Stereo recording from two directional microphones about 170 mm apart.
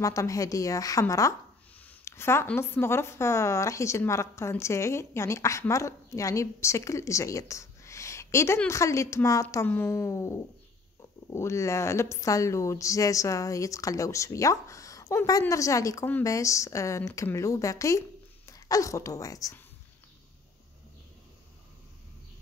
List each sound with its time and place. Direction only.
0.0 s a woman's voice: 20° left (ahead or behind)